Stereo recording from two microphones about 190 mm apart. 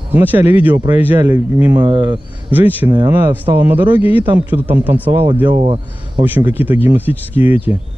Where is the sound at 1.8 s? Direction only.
25° right (ahead or behind).